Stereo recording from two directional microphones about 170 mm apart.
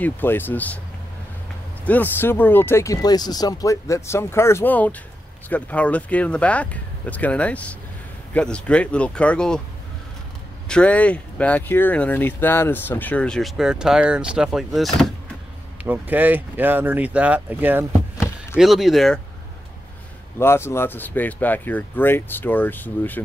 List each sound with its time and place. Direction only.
0.0 s speech: 10° left (ahead or behind)
1.9 s speech: 10° left (ahead or behind)
10.7 s speech: 5° left (ahead or behind)
15.8 s speech: 10° right (ahead or behind)
20.3 s speech: 15° left (ahead or behind)